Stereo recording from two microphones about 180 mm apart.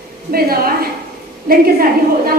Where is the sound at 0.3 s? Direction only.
55° right (ahead or behind).